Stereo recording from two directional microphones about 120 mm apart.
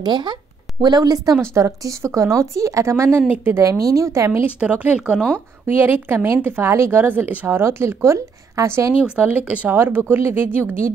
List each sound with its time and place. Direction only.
0.0 s speech: 40° right (ahead or behind); by 4.5 s 25° right (ahead or behind)
4.6 s speech: 10° right (ahead or behind)
9.0 s speech: 10° right (ahead or behind)